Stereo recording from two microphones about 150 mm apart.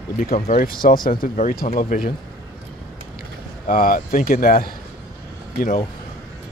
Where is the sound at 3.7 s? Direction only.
70° left (ahead or behind).